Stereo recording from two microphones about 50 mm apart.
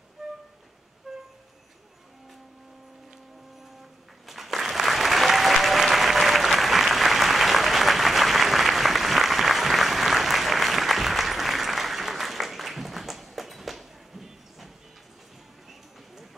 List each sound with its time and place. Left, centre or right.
0.2 s train: centre
4.3 s applause: centre